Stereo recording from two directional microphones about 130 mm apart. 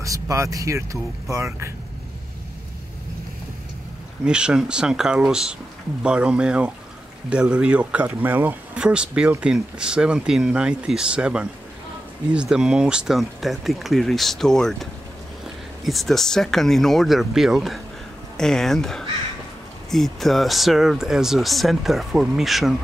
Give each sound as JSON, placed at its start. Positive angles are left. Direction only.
{"t": 0.0, "sound": "speech", "side_deg": -25}
{"t": 4.2, "sound": "speech", "side_deg": -5}